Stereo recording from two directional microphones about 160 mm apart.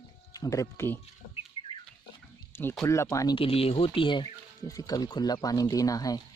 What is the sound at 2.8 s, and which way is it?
Speech, 20° left (ahead or behind).